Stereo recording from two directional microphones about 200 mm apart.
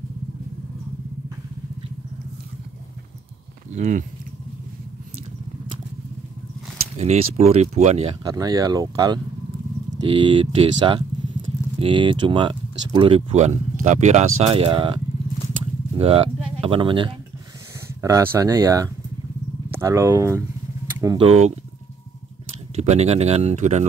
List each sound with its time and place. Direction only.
3.7 s speech: 35° right (ahead or behind)
7.0 s speech: 35° right (ahead or behind)
8.3 s speech: 20° right (ahead or behind)
15.6 s a sound: 30° right (ahead or behind)
18.0 s speech: 15° right (ahead or behind)
21.3 s speech: 35° right (ahead or behind)
22.8 s speech: 35° right (ahead or behind)